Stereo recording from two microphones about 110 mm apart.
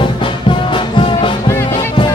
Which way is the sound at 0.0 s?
45° left (ahead or behind).